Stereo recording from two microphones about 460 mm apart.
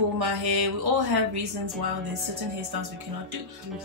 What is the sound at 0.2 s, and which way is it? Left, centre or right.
Speech, right.